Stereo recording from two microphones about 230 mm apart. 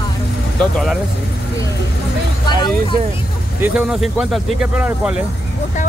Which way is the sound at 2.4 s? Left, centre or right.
Centre.